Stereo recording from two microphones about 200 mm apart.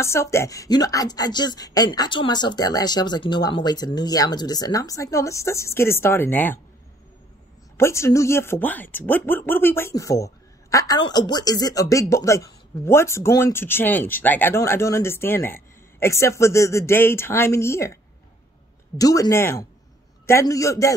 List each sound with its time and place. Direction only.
0.0 s speech: 15° left (ahead or behind)
7.7 s speech: 15° left (ahead or behind)
18.9 s speech: 20° left (ahead or behind)